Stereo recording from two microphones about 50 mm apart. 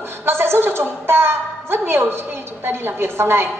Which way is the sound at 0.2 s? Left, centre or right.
Right.